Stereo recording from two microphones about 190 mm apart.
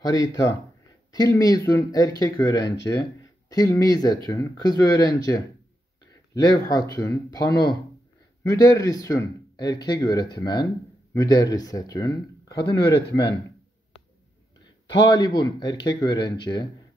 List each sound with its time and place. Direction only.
0.0 s speech: 20° left (ahead or behind)
15.0 s speech: 20° left (ahead or behind)